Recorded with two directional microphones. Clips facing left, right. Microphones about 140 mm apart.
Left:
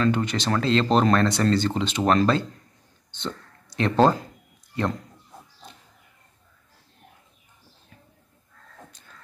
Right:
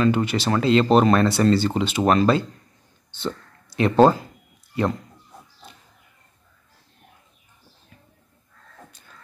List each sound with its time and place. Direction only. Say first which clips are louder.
0.0 s speech: right 3 dB; 10° right (ahead or behind)